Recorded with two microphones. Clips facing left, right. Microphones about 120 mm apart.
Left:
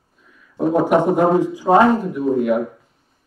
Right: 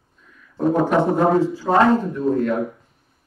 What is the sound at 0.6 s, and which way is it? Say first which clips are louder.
A man's voice: left 2 dB; 10° left (ahead or behind).